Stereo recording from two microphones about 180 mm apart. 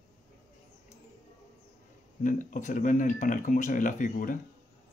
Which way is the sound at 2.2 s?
45° left (ahead or behind).